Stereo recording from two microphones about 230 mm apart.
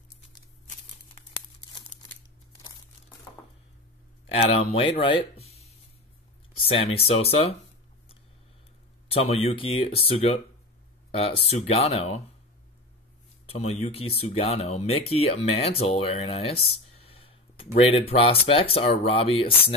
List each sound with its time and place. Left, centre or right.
4.3 s speech: left
9.1 s speech: left
13.5 s speech: left